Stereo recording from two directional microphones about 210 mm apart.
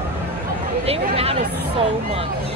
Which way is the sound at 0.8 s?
30° right (ahead or behind).